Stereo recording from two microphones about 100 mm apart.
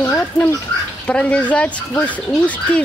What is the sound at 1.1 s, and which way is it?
Speech, 15° left (ahead or behind).